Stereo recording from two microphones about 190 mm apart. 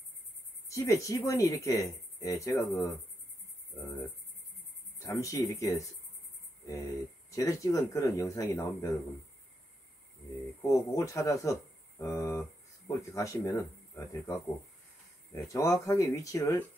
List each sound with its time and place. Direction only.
0.7 s speech: 15° left (ahead or behind)
10.6 s speech: 15° left (ahead or behind)